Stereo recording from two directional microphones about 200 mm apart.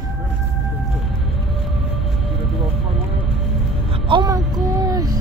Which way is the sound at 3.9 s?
25° right (ahead or behind).